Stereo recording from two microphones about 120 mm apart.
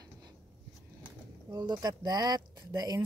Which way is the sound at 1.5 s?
35° right (ahead or behind).